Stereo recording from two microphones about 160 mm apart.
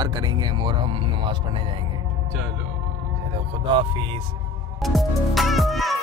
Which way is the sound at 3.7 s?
35° right (ahead or behind).